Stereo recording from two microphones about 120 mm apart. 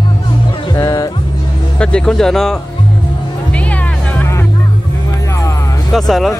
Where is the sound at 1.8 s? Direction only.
5° left (ahead or behind).